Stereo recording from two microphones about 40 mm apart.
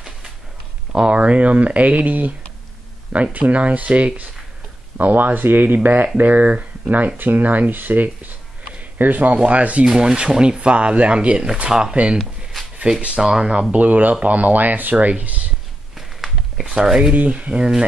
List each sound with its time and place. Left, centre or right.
0.9 s speech: right
3.3 s speech: right
4.9 s speech: right
9.8 s speech: centre
10.6 s speech: right
13.2 s speech: centre
13.7 s speech: right
17.1 s speech: right